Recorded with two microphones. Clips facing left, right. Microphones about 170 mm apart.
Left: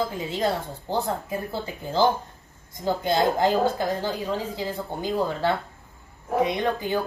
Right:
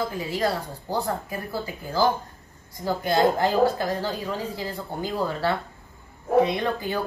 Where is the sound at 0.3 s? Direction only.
20° left (ahead or behind).